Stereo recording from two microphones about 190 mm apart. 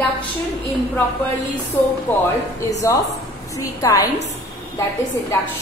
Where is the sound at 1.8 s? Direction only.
10° left (ahead or behind).